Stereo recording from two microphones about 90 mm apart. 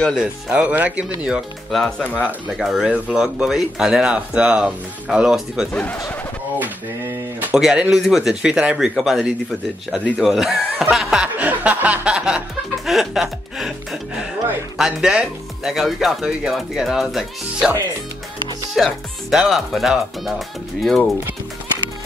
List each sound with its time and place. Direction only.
0.1 s speech: 10° right (ahead or behind)
1.7 s speech: centre (ahead or behind)
5.7 s speech: 15° left (ahead or behind)
7.5 s speech: 5° right (ahead or behind)
10.8 s snicker: 5° right (ahead or behind)
11.3 s music: 15° right (ahead or behind)
14.8 s speech: 5° right (ahead or behind)
18.8 s speech: centre (ahead or behind)